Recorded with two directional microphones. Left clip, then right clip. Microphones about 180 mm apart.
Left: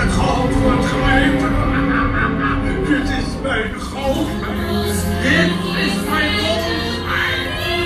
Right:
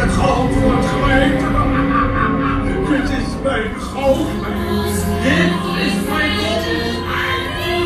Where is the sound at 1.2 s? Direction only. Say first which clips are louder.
Even; 5° right (ahead or behind).